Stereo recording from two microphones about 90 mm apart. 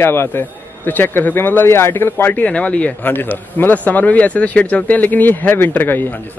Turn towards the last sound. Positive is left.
turn(degrees=20)  # may be behind; listen again after turning